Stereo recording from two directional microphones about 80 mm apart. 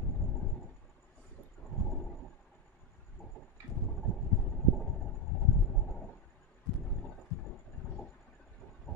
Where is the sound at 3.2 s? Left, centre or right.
Centre.